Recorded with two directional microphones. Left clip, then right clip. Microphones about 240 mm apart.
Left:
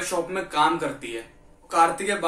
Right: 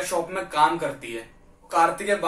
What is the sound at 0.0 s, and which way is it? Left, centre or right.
Speech, centre.